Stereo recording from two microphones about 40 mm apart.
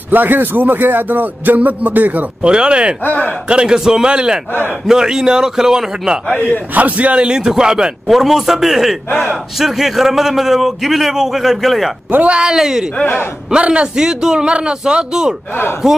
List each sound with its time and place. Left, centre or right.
0.1 s speech: right
2.4 s a man's voice: right
3.0 s speech: left
3.4 s a man's voice: right
6.7 s a man's voice: right
7.2 s a man's voice: centre
8.1 s a man's voice: centre
12.2 s a man's voice: right
12.4 s a man's voice: centre
13.0 s speech: left
13.5 s a man's voice: right
13.9 s a man's voice: centre